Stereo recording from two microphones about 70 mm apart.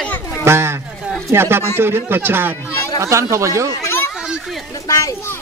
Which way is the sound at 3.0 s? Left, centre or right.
Right.